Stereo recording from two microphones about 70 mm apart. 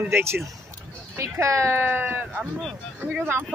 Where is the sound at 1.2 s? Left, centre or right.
Right.